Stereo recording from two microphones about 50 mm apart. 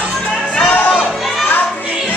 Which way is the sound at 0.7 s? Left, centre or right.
Left.